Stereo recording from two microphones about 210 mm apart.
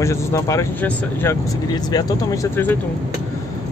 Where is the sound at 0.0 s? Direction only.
15° left (ahead or behind).